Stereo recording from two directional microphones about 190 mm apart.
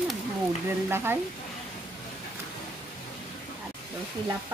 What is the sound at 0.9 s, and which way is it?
Speech, 10° right (ahead or behind).